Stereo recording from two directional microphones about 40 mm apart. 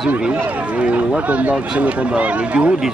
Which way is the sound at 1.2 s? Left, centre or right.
Right.